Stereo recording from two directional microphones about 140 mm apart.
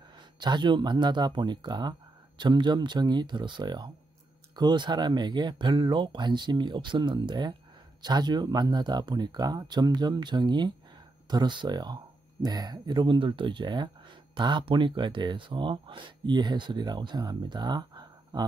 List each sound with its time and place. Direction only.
0.4 s speech: 30° right (ahead or behind)